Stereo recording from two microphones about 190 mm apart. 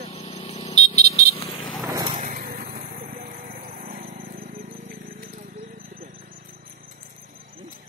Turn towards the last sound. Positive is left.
turn(degrees=-45)  # may be behind; listen again after turning